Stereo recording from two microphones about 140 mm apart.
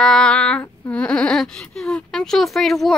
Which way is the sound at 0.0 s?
5° left (ahead or behind).